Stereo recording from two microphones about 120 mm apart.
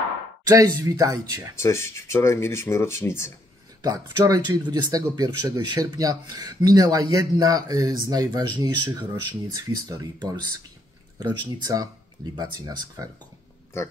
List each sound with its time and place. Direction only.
0.4 s speech: 30° right (ahead or behind)
1.6 s speech: 20° left (ahead or behind)
3.8 s speech: 35° right (ahead or behind)